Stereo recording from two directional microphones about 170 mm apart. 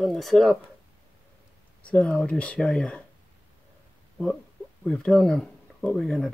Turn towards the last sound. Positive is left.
turn(degrees=5)  # may be behind; listen again after turning